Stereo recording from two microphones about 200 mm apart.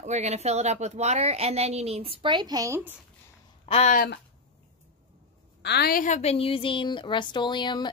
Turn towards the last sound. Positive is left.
turn(degrees=20)  # may be behind; listen again after turning